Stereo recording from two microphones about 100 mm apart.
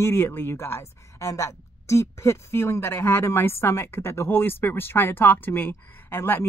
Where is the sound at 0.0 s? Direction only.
25° left (ahead or behind).